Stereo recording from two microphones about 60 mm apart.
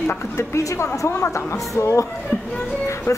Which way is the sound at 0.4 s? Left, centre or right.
Left.